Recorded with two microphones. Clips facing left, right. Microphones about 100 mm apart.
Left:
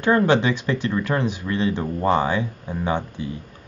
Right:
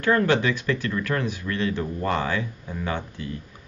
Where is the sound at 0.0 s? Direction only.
20° left (ahead or behind).